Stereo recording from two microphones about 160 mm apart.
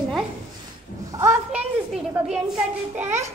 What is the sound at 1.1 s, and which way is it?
Speech, 20° right (ahead or behind).